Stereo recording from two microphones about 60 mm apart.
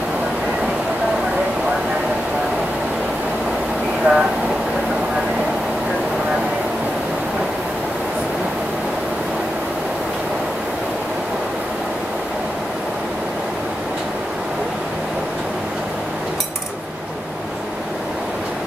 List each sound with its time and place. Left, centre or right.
4.1 s vehicle: right